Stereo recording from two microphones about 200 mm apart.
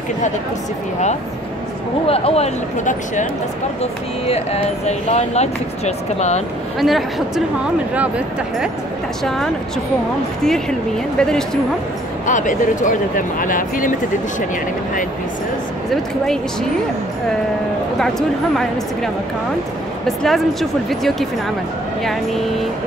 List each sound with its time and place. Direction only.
2.0 s speech: 30° left (ahead or behind)
6.8 s speech: centre (ahead or behind)
9.2 s speech: centre (ahead or behind)
11.1 s speech: 5° left (ahead or behind)
12.3 s speech: 40° left (ahead or behind)
20.1 s speech: centre (ahead or behind)